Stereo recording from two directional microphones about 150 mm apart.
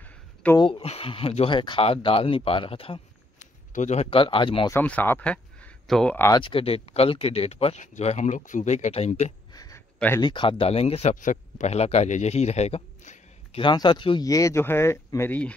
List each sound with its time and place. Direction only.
0.0 s a sound: 10° left (ahead or behind)
0.6 s speech: 30° left (ahead or behind)
0.8 s speech: 40° left (ahead or behind)
3.7 s speech: 50° left (ahead or behind)
4.6 s speech: 10° left (ahead or behind)
6.1 s speech: 20° left (ahead or behind)
6.4 s speech: 40° left (ahead or behind)
9.5 s a sound: 25° left (ahead or behind)
9.9 s speech: 15° left (ahead or behind)
10.2 s speech: 35° left (ahead or behind)
13.6 s speech: 30° left (ahead or behind); by 15.5 s 10° left (ahead or behind)